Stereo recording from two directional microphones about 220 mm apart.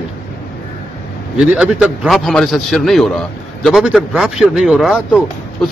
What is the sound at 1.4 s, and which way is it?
A man's voice, 5° right (ahead or behind).